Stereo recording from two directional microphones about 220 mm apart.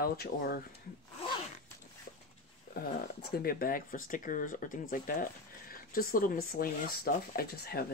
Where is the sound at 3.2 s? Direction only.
40° left (ahead or behind).